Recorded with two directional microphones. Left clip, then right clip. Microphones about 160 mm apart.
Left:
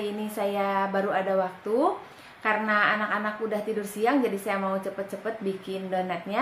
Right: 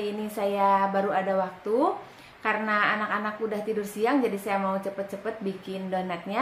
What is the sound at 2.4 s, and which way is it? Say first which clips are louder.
A woman's voice: left 1 dB; 5° right (ahead or behind).